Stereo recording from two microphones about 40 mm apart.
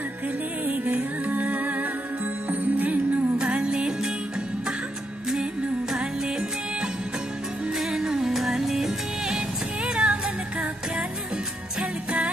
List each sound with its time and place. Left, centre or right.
0.9 s music: right
3.7 s music: centre
7.8 s music: centre
9.8 s music: right